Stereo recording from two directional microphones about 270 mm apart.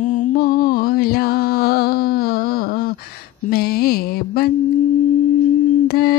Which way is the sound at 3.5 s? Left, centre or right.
Left.